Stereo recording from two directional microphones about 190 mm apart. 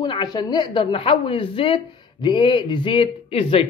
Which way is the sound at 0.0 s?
25° left (ahead or behind).